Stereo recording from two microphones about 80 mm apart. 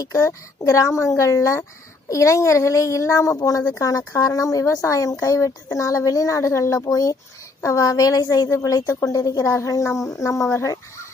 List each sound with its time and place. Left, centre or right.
0.0 s a woman's voice: left